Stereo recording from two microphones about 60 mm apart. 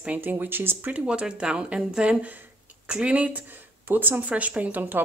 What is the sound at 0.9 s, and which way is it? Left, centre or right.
A woman's voice, centre.